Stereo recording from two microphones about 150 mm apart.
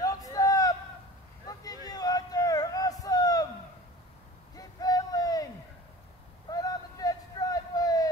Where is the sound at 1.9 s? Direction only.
25° left (ahead or behind).